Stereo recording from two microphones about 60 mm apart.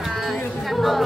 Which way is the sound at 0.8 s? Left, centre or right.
Centre.